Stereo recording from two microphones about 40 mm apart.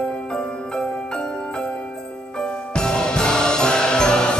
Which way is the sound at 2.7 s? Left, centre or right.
Centre.